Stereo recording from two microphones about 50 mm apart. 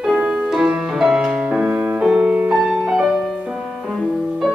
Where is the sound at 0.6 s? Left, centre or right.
Centre.